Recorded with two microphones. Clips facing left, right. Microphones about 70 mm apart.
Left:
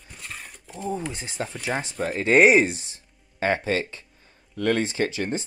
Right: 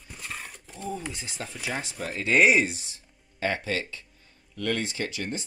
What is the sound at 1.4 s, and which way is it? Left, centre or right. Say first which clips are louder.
Speech: left 5 dB; left.